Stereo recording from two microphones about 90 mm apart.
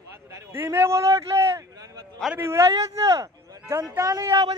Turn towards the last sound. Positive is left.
turn(degrees=-40)  # may be behind; listen again after turning